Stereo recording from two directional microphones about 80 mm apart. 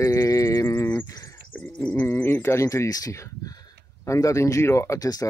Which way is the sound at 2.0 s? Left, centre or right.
Left.